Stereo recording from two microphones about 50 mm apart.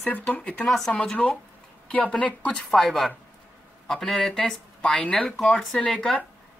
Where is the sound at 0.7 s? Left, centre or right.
Centre.